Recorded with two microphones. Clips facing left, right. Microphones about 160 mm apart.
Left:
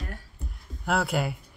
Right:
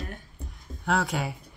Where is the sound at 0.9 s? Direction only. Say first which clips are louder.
Left 1 dB; 5° left (ahead or behind).